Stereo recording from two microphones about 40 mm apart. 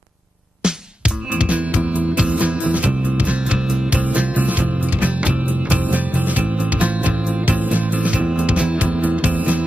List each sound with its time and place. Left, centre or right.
0.6 s music: right
1.3 s music: right
3.5 s music: right
4.0 s music: right